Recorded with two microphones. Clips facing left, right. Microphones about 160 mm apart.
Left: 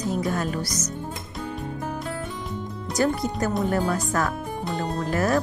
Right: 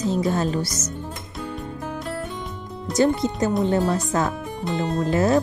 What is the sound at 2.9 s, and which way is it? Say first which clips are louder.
Speech: right 4 dB; 25° right (ahead or behind).